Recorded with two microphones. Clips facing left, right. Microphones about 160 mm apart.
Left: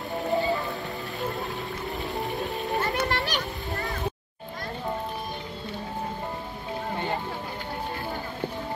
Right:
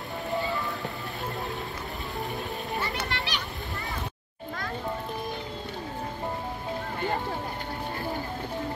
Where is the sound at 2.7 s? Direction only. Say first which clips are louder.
Left 6 dB; 40° left (ahead or behind).